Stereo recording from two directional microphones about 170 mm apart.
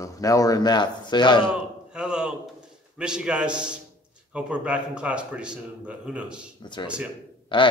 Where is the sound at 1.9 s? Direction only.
5° right (ahead or behind).